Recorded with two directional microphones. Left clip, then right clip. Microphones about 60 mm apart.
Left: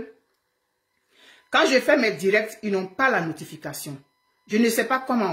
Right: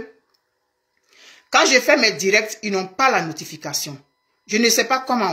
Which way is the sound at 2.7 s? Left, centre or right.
Centre.